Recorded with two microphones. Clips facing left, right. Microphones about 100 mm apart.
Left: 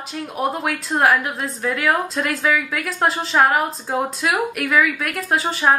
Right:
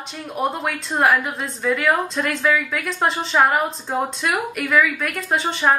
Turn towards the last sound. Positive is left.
turn(degrees=5)  # may be behind; listen again after turning